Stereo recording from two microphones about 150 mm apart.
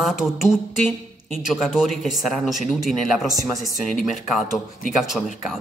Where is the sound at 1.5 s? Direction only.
5° right (ahead or behind).